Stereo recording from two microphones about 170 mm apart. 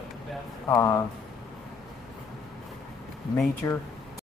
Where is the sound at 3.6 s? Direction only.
15° left (ahead or behind).